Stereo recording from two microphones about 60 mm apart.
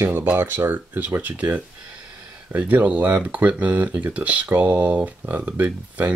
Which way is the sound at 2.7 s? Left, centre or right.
Right.